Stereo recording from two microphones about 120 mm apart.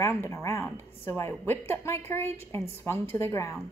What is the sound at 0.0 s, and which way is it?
A woman's voice, 20° left (ahead or behind).